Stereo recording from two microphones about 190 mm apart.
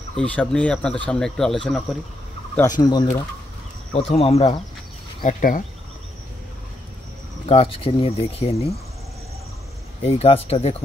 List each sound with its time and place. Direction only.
0.1 s speech: 5° left (ahead or behind)
2.5 s speech: 20° left (ahead or behind)
3.9 s speech: 30° left (ahead or behind)
5.2 s speech: 45° left (ahead or behind)
7.4 s speech: 30° left (ahead or behind)
10.0 s speech: 35° left (ahead or behind)